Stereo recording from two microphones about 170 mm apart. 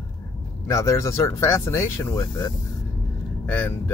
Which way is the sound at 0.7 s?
20° left (ahead or behind).